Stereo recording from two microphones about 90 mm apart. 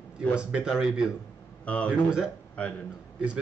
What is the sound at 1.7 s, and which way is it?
Speech, 15° left (ahead or behind).